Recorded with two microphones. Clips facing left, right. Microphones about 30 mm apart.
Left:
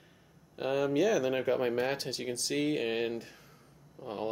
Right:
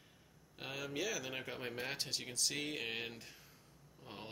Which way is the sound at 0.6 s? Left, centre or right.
Centre.